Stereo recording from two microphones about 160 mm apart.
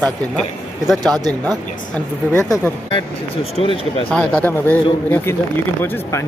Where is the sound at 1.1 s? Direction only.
25° right (ahead or behind).